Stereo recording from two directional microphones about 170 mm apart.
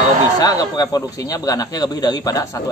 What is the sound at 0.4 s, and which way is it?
Speech, 20° left (ahead or behind).